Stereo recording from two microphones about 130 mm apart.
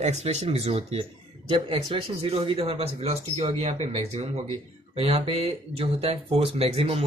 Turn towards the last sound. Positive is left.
turn(degrees=-50)  # may be behind; listen again after turning